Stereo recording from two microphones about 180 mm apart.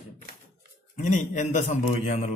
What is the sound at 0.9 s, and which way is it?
Speech, 40° left (ahead or behind).